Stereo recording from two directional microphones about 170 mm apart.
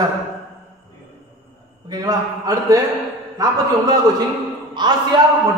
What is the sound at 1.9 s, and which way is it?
A man's voice, 25° right (ahead or behind).